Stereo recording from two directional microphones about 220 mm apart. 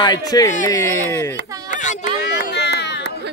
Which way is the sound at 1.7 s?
35° left (ahead or behind).